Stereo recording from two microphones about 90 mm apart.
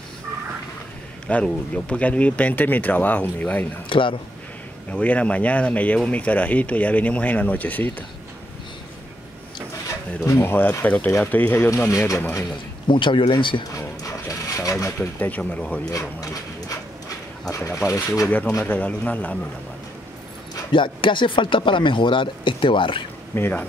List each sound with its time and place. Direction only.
1.2 s speech: 15° left (ahead or behind)
3.9 s speech: 70° left (ahead or behind)
4.9 s speech: 15° left (ahead or behind)
9.8 s speech: 30° left (ahead or behind)
12.8 s speech: 65° left (ahead or behind)
13.7 s a sound: 40° left (ahead or behind)
15.1 s speech: 20° left (ahead or behind)
15.8 s speech: 40° left (ahead or behind)
18.7 s speech: 15° left (ahead or behind)
20.7 s speech: 65° left (ahead or behind)
23.3 s speech: 20° left (ahead or behind)